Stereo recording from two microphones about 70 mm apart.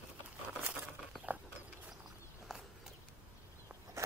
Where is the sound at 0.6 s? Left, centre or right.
Right.